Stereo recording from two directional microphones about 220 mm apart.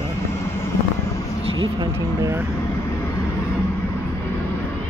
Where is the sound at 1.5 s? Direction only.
20° right (ahead or behind).